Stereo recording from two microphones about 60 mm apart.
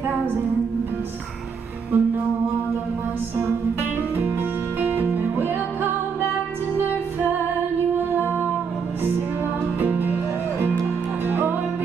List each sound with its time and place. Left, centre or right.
1.9 s music: right
4.2 s music: right
8.1 s music: right
9.8 s music: right